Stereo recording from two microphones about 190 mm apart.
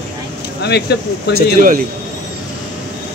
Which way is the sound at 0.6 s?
60° left (ahead or behind).